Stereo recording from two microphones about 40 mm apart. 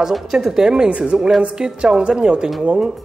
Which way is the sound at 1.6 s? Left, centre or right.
Centre.